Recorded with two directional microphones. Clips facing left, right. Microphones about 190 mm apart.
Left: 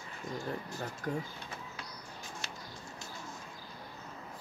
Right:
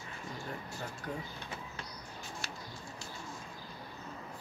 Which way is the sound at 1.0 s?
45° left (ahead or behind).